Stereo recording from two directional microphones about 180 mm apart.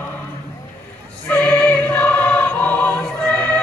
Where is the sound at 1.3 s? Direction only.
10° left (ahead or behind).